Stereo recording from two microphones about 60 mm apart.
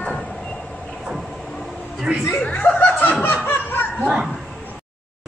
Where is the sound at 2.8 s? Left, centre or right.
Left.